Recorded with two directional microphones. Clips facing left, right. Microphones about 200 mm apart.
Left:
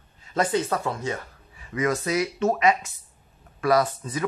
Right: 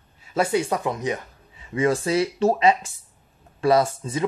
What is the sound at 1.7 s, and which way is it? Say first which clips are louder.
Speech: right 3 dB; 30° right (ahead or behind).